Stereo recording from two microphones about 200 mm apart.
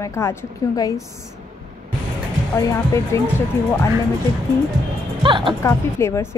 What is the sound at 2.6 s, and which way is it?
Speech, 15° left (ahead or behind).